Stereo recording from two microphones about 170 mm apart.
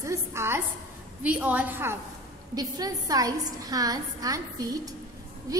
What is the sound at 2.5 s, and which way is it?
A woman's voice, 20° right (ahead or behind).